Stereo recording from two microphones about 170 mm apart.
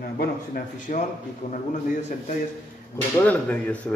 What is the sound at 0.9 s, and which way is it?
Speech, 50° left (ahead or behind).